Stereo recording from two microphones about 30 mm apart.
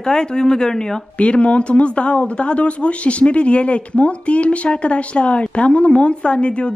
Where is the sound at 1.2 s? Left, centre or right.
Left.